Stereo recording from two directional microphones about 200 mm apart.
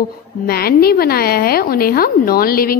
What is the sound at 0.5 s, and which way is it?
A woman's voice, 50° left (ahead or behind).